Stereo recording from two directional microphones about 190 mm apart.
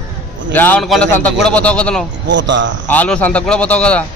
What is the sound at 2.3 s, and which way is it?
Speech, 75° right (ahead or behind).